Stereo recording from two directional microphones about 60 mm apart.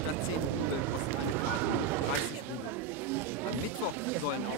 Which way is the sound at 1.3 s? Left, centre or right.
Right.